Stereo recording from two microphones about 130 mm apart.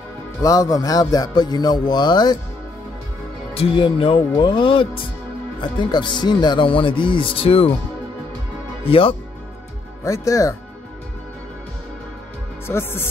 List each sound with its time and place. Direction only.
0.4 s speech: 25° left (ahead or behind)
3.5 s speech: 45° left (ahead or behind)
8.8 s speech: 45° left (ahead or behind)
10.0 s speech: 25° left (ahead or behind)
12.6 s speech: 20° left (ahead or behind)